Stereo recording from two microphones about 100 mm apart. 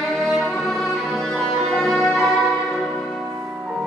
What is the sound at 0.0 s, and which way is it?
Music, centre (ahead or behind).